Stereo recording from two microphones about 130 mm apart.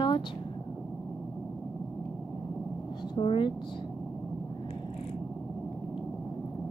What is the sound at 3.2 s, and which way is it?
Speech, 40° left (ahead or behind).